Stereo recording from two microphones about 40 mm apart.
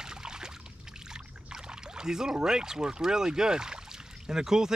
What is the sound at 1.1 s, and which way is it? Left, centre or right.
Rowboat, centre.